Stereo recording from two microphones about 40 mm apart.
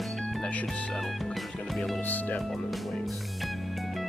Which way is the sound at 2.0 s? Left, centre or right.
Left.